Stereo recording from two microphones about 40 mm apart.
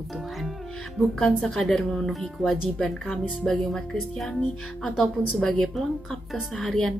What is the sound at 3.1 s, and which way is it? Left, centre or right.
Speech, centre.